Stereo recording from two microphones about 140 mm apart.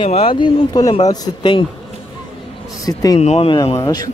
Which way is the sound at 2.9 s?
25° left (ahead or behind).